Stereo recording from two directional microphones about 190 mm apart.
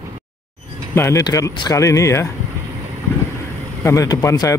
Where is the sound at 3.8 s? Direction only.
15° left (ahead or behind).